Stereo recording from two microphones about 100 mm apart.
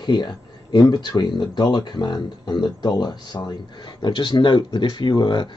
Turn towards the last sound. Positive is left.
turn(degrees=50)  # may be behind; listen again after turning